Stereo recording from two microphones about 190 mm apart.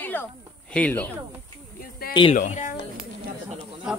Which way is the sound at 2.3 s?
40° left (ahead or behind).